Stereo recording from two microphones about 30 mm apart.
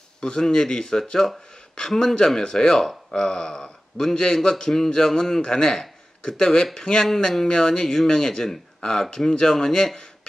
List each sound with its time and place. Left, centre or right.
0.2 s speech: left
4.1 s speech: left